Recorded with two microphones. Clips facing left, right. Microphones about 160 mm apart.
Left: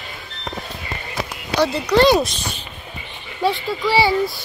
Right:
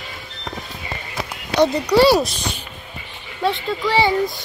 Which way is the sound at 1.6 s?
15° right (ahead or behind).